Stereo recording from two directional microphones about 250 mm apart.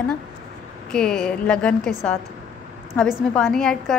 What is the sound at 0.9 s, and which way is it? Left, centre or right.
A woman's voice, centre.